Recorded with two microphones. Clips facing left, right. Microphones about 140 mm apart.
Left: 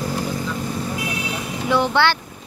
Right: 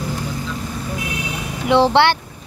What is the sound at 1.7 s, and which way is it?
Speech, 30° right (ahead or behind).